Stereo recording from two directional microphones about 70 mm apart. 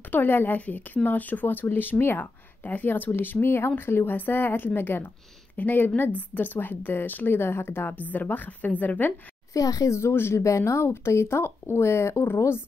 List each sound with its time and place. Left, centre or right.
0.1 s speech: left
9.5 s speech: left